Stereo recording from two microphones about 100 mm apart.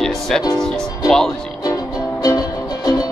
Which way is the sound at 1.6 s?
35° left (ahead or behind).